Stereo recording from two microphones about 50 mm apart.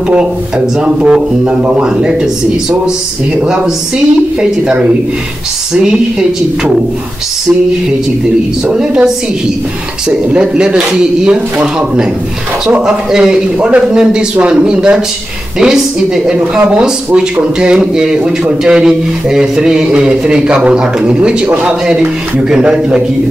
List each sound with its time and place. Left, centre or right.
0.1 s speech: right
3.4 s a man's voice: centre
8.7 s a man's voice: centre
12.8 s a man's voice: centre
13.7 s a man's voice: right